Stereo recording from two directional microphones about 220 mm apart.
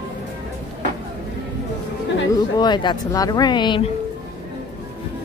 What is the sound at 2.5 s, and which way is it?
Speech, 20° left (ahead or behind).